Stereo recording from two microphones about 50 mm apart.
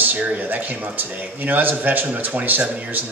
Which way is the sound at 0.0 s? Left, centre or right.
Right.